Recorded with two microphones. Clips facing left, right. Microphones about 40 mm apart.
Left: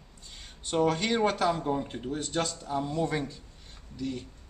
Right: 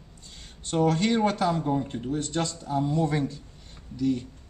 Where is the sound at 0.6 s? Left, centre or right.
Centre.